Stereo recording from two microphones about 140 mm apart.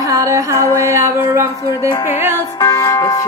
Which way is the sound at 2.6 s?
25° left (ahead or behind).